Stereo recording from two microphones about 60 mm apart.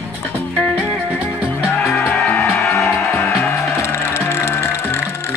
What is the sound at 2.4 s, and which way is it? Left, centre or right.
Music, left.